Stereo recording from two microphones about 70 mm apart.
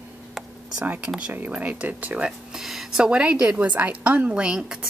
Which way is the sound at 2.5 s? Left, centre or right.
Centre.